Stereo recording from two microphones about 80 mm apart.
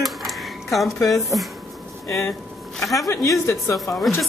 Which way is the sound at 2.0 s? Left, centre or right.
Left.